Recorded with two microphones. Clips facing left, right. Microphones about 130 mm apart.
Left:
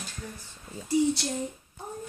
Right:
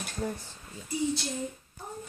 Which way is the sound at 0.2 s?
45° right (ahead or behind).